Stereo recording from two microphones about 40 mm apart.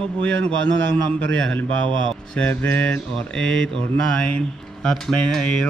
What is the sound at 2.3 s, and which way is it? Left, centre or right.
Mantra, left.